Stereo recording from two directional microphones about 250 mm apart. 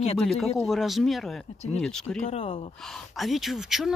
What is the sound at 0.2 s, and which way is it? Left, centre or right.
Speech, centre.